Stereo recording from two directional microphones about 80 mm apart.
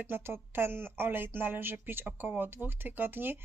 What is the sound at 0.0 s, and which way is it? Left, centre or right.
Speech, right.